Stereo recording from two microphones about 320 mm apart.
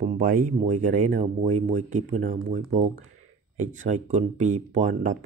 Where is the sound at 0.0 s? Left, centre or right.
Right.